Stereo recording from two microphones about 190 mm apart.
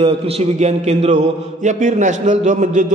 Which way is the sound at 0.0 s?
35° right (ahead or behind).